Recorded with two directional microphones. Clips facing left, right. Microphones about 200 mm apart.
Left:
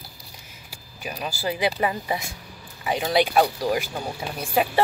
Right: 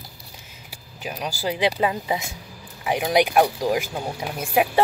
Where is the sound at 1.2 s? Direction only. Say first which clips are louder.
Right 2 dB; 15° right (ahead or behind).